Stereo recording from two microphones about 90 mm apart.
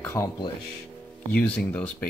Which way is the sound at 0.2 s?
35° left (ahead or behind).